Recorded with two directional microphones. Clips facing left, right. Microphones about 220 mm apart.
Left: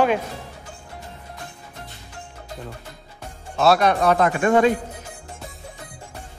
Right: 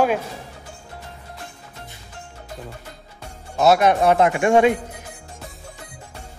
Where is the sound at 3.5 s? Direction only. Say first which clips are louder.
Right 2 dB; 20° right (ahead or behind).